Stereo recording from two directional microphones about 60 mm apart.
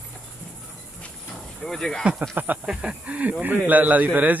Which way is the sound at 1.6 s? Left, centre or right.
Centre.